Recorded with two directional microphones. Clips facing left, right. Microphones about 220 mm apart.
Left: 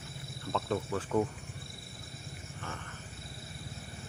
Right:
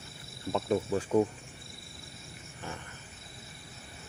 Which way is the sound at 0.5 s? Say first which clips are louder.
Right 4 dB; 15° right (ahead or behind).